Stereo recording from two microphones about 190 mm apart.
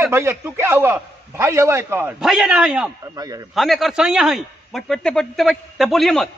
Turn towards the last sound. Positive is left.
turn(degrees=0)  # may be behind; listen again after turning